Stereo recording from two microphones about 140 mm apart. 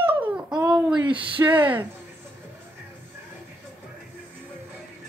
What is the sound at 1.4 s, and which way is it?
Speech, 15° right (ahead or behind).